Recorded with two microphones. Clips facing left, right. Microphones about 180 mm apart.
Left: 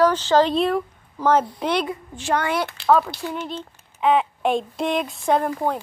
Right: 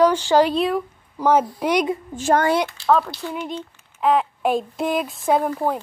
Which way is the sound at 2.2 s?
45° right (ahead or behind).